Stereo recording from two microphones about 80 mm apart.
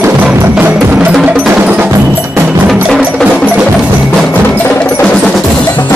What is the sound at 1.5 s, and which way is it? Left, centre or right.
Tubular bells, centre.